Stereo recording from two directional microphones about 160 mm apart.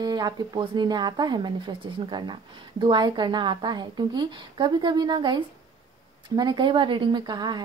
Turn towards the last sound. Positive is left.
turn(degrees=-25)  # may be behind; listen again after turning